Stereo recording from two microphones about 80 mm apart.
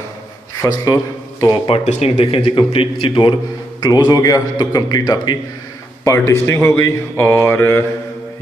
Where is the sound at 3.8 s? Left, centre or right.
Left.